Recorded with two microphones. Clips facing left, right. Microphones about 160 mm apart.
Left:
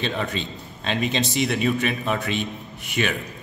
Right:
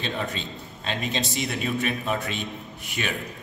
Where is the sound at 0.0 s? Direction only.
Centre (ahead or behind).